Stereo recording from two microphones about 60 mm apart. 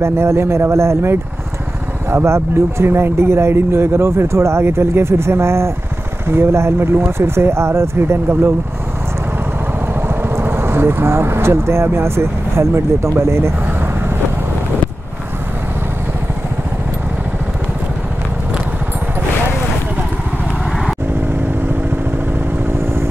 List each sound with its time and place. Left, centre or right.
0.0 s speech: right
9.9 s speech: right